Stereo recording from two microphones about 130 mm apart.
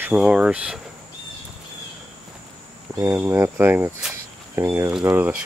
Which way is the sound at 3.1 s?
20° right (ahead or behind).